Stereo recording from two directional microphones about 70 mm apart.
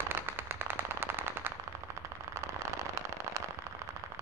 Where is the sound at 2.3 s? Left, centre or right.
Right.